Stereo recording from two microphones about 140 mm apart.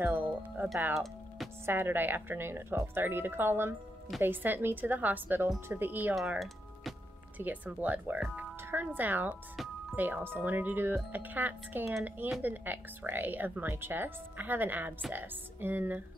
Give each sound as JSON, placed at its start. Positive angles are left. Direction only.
{"t": 0.0, "sound": "speech", "side_deg": -10}
{"t": 1.7, "sound": "speech", "side_deg": -15}